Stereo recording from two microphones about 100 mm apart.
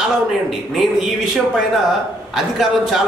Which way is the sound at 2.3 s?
Centre (ahead or behind).